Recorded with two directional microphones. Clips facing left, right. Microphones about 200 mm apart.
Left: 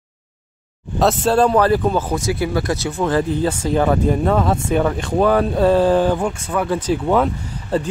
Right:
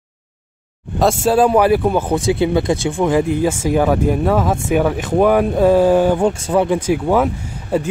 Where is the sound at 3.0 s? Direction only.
15° right (ahead or behind).